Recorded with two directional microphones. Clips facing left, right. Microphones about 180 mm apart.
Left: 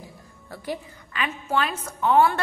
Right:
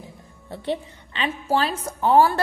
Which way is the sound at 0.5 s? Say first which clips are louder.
Right 5 dB; 25° right (ahead or behind).